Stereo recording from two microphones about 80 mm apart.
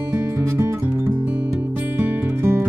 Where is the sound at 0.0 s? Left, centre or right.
Right.